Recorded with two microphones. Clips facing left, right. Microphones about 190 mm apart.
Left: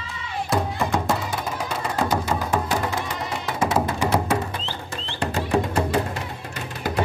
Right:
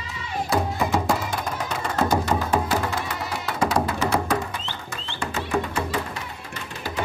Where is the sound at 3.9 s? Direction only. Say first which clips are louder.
Left 1 dB; 10° left (ahead or behind).